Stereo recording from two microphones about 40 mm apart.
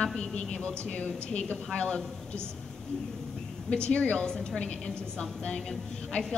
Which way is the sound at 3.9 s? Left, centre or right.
Left.